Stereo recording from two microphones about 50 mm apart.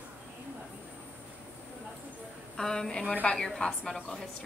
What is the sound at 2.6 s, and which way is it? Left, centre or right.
A woman's voice, centre.